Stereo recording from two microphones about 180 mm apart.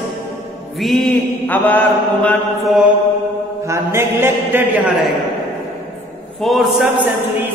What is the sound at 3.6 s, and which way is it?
A man's voice, 15° right (ahead or behind).